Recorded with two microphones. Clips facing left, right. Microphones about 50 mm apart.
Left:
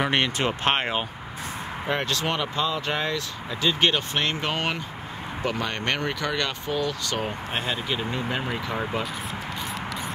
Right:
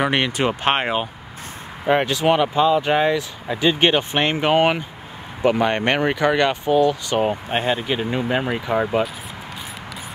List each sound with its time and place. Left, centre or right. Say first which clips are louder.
0.0 s speech: right 4 dB; centre